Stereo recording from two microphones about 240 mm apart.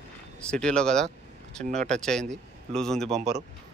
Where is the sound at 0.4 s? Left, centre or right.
Centre.